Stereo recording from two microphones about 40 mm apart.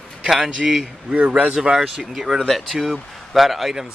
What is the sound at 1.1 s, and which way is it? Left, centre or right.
Speech, right.